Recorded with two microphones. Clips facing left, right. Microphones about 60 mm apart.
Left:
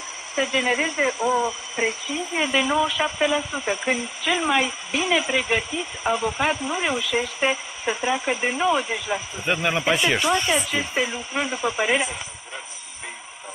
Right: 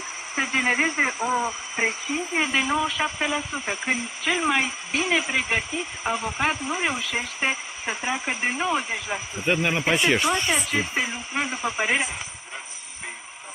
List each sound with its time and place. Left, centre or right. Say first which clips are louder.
0.4 s speech: left 1 dB; right
2.3 s speech: left 3 dB; centre
6.0 s speech: left 3 dB; centre